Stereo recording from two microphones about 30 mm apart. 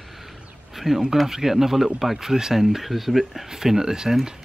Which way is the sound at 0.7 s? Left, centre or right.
Centre.